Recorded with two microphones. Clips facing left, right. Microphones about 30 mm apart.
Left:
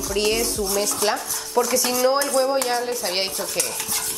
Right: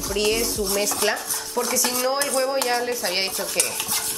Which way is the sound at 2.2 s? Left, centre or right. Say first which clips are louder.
Left 2 dB; centre.